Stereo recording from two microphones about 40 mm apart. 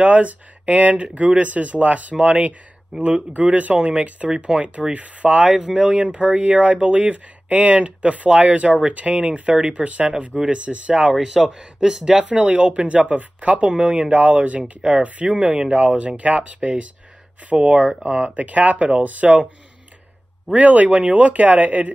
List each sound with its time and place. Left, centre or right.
0.0 s speech: right
2.9 s speech: centre
3.3 s speech: right
11.1 s speech: centre
12.3 s speech: right
18.3 s speech: right
20.5 s speech: right